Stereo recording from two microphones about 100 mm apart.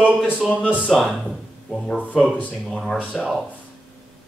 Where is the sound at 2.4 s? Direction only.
5° left (ahead or behind).